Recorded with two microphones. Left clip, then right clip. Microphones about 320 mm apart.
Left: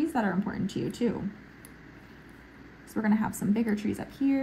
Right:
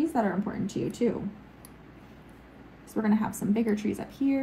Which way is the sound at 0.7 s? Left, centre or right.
Centre.